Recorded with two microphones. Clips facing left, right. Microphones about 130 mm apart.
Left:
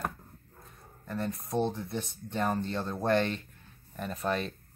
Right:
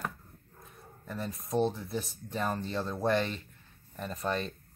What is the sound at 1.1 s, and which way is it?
Speech, 5° right (ahead or behind).